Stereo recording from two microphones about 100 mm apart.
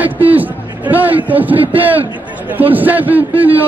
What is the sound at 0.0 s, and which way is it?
A man's voice, 15° right (ahead or behind).